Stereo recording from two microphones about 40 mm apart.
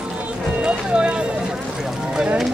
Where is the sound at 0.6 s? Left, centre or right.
Right.